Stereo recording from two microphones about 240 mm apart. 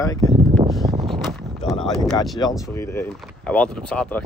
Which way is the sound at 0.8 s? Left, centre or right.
Centre.